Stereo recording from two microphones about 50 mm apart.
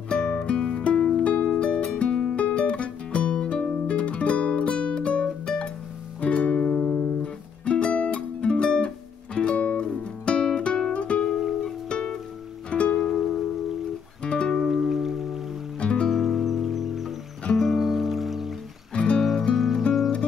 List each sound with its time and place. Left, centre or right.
0.1 s music: centre
1.2 s music: left
11.2 s music: centre
11.9 s music: centre
12.9 s music: centre
14.2 s music: centre
14.7 s music: centre
15.8 s music: centre
16.1 s music: centre
18.9 s music: centre
19.5 s music: centre